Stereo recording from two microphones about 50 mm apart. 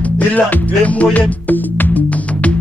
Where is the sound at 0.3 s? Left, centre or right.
Left.